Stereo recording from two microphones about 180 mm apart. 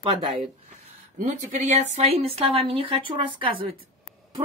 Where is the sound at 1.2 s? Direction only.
45° right (ahead or behind).